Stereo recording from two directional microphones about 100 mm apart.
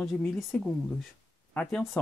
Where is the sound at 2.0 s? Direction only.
15° left (ahead or behind).